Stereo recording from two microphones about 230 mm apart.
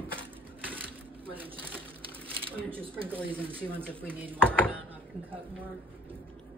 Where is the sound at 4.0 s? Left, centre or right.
Centre.